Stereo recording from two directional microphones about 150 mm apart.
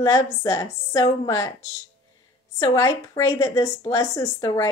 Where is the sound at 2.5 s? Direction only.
20° left (ahead or behind).